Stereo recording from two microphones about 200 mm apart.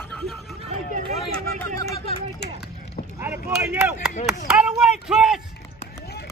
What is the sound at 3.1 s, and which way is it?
Speech, 10° right (ahead or behind).